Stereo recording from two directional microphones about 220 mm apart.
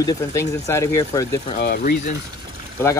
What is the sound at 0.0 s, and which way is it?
Speech, 15° left (ahead or behind).